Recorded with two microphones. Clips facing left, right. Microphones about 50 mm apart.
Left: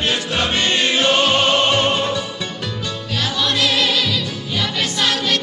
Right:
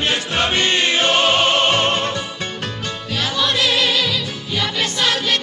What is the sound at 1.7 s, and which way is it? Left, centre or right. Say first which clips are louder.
Music: left 1 dB; right.